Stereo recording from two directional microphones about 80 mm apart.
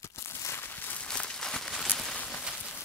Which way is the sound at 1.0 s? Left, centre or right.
Centre.